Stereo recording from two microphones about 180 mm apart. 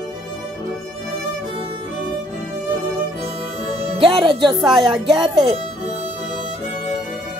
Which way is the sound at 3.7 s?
30° right (ahead or behind).